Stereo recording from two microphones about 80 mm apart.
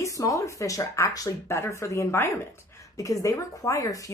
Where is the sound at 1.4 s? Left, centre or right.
Left.